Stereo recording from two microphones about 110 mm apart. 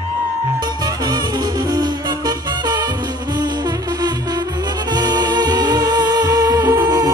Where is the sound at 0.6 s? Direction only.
40° right (ahead or behind).